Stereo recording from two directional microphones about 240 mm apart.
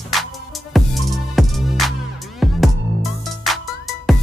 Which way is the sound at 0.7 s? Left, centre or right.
Centre.